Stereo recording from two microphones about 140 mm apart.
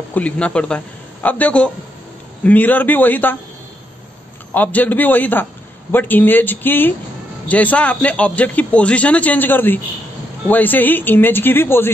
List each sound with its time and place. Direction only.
0.1 s a man's voice: 10° left (ahead or behind)
4.6 s a man's voice: 10° left (ahead or behind)